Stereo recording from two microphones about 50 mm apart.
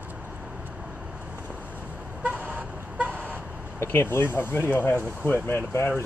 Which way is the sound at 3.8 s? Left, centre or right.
Left.